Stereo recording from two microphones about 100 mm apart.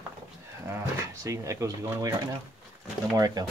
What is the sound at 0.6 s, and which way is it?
Speech, 30° right (ahead or behind).